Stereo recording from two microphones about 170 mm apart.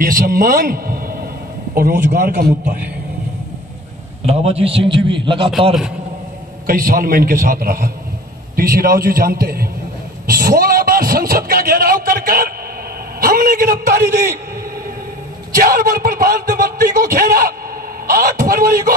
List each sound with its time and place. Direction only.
0.0 s a man's voice: 60° right (ahead or behind)
1.8 s speech: 70° right (ahead or behind)
4.3 s a man's voice: 35° right (ahead or behind)
6.7 s a man's voice: 60° right (ahead or behind)
15.5 s a man's voice: 60° right (ahead or behind)